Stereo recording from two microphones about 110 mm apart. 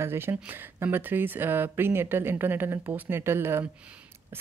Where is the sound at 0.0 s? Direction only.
20° right (ahead or behind).